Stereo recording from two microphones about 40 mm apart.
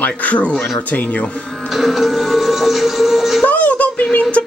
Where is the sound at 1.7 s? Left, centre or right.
Centre.